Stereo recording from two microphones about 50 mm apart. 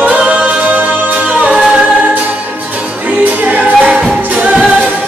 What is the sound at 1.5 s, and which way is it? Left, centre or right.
A capella, right.